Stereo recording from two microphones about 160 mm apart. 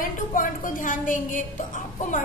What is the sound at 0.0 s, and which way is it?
A woman's voice, 55° left (ahead or behind).